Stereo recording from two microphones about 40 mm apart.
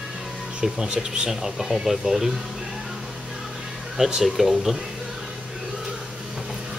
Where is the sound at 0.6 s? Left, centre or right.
Centre.